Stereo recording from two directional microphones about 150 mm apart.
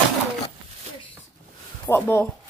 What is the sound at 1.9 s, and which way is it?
Speech, 15° left (ahead or behind).